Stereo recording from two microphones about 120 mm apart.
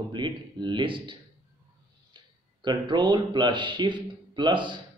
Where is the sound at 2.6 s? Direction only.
40° right (ahead or behind).